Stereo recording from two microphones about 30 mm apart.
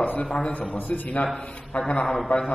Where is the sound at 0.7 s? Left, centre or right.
Left.